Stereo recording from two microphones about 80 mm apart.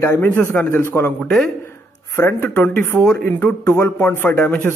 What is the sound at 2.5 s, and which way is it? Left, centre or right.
Speech, left.